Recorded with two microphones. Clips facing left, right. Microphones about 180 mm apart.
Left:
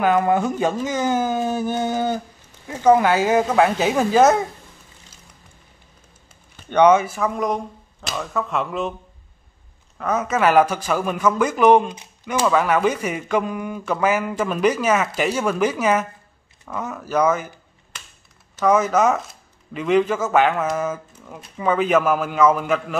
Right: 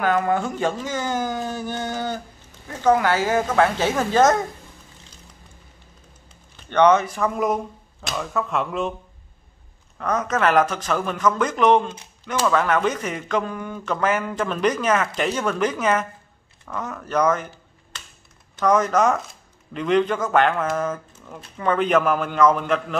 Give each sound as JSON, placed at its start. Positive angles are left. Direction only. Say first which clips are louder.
{"t": 0.0, "sound": "a man's voice", "louder": "left 3 dB", "side_deg": 20}
{"t": 6.7, "sound": "speech", "louder": "left 2 dB", "side_deg": 10}
{"t": 9.9, "sound": "a man's voice", "louder": "left 2 dB", "side_deg": 5}
{"t": 18.6, "sound": "speech", "louder": "left 1 dB", "side_deg": 5}